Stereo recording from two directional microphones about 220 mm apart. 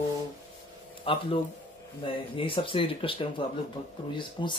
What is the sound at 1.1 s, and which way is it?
Speech, 25° left (ahead or behind).